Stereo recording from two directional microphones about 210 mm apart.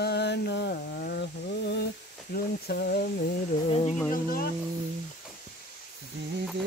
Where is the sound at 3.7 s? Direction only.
25° left (ahead or behind).